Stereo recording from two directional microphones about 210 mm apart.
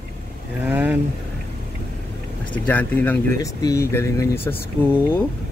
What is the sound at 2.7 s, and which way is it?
Speech, 10° left (ahead or behind).